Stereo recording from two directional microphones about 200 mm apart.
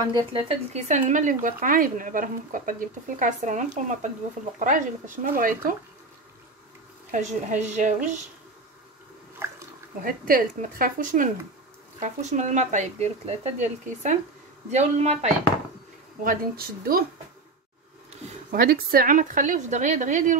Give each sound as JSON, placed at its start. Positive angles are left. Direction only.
{"t": 0.1, "sound": "speech", "side_deg": -30}
{"t": 7.1, "sound": "speech", "side_deg": -40}
{"t": 9.4, "sound": "a sound", "side_deg": -15}
{"t": 10.0, "sound": "speech", "side_deg": -45}
{"t": 16.3, "sound": "speech", "side_deg": -50}
{"t": 18.5, "sound": "speech", "side_deg": -45}